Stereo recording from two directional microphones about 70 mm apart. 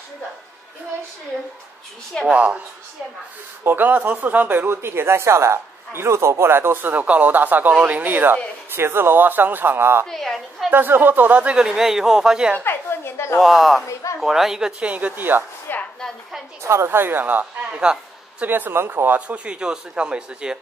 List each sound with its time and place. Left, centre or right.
2.3 s speech: centre
3.6 s speech: right
10.0 s a woman's voice: centre
10.7 s speech: right; by 12.5 s centre
12.6 s a woman's voice: left
13.4 s speech: centre
14.8 s speech: centre
15.7 s a sound: left
16.6 s speech: right
17.6 s speech: centre
18.4 s speech: right
19.1 s speech: centre